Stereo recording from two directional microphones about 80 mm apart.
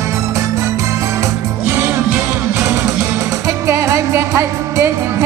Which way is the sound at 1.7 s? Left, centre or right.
Right.